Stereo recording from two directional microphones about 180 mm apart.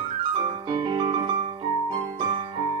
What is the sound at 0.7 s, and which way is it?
Music, 25° right (ahead or behind).